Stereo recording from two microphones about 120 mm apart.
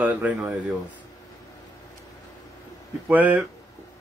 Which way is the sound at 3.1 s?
15° right (ahead or behind).